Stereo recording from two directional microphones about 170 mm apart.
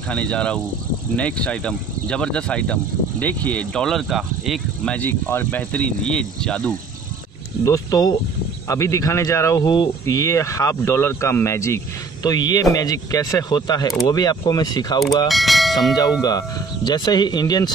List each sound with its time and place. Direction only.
0.1 s speech: 5° left (ahead or behind)
7.6 s speech: 20° left (ahead or behind)
15.2 s speech: centre (ahead or behind)
16.0 s speech: 25° left (ahead or behind)